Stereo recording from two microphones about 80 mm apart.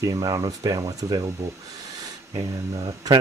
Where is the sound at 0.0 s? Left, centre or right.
Right.